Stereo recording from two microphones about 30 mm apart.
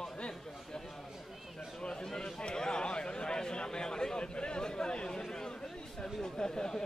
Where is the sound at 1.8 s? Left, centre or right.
Left.